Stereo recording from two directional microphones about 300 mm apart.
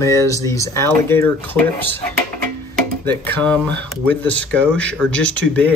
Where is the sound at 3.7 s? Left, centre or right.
Right.